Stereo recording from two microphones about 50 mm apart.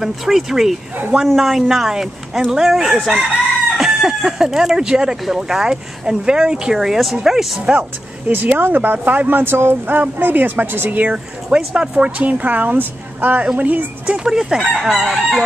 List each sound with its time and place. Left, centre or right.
0.0 s speech: centre
8.3 s speech: right
10.9 s speech: right
11.5 s speech: right; by 15.4 s centre